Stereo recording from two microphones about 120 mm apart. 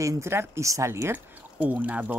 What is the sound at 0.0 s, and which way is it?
Speech, 25° right (ahead or behind).